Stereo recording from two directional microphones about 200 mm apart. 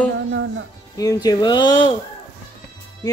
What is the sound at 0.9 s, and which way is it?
Speech, 20° left (ahead or behind).